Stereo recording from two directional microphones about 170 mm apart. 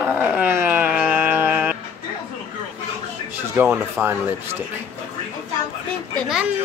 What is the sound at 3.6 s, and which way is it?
Speech, 15° right (ahead or behind).